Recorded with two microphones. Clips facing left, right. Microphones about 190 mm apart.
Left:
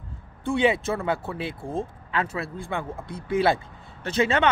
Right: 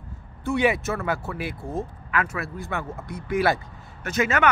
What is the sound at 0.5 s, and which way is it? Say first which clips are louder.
Speech: even; 30° left (ahead or behind).